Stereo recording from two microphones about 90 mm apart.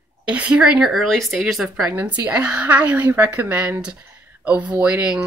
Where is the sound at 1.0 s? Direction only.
5° left (ahead or behind).